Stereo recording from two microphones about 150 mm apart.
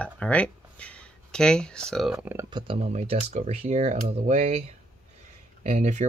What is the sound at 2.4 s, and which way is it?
Speech, 30° right (ahead or behind).